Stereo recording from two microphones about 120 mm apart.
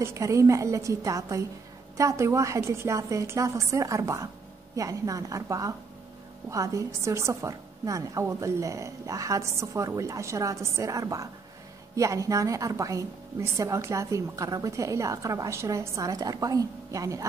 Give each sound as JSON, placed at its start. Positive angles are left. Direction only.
{"t": 0.0, "sound": "a woman's voice", "side_deg": -25}